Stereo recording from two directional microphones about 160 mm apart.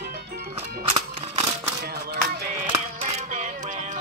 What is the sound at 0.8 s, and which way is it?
Music, 40° right (ahead or behind).